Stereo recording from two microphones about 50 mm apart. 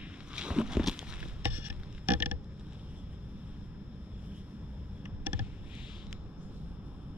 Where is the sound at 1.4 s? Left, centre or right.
Right.